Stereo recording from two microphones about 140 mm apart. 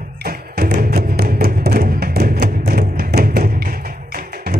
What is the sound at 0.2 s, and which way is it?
Music, 90° right.